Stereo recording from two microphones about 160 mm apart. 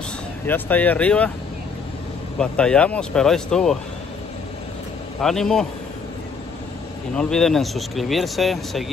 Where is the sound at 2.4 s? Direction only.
5° left (ahead or behind).